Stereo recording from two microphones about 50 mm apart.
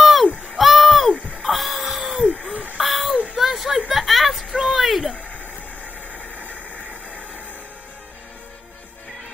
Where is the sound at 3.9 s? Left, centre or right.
Centre.